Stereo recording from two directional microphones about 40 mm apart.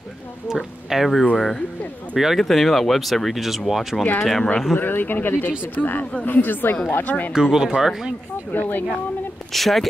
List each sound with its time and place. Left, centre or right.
0.5 s speech: centre
1.3 s speech: centre
2.1 s speech: centre
4.7 s speech: left
7.3 s speech: centre
8.5 s speech: left
9.5 s speech: centre